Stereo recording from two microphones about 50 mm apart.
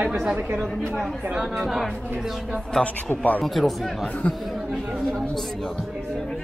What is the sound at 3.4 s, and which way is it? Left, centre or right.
Speech, centre.